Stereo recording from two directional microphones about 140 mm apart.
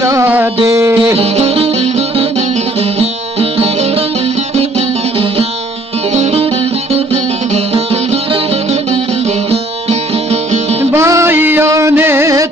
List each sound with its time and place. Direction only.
0.0 s music: 20° right (ahead or behind)
1.1 s music: 45° right (ahead or behind)
9.5 s music: 50° right (ahead or behind)
10.8 s music: 20° right (ahead or behind)